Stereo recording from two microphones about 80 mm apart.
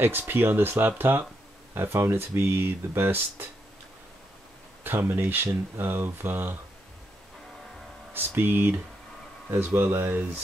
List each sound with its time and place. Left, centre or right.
0.0 s speech: right
4.8 s speech: right
8.1 s speech: right
9.8 s speech: right